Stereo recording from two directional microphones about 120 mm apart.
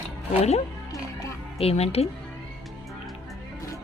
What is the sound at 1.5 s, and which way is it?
Speech, 60° left (ahead or behind).